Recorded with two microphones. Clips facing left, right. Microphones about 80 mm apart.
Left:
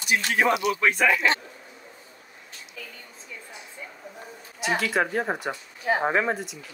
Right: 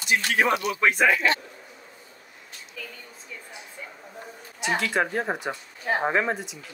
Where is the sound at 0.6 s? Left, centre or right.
Right.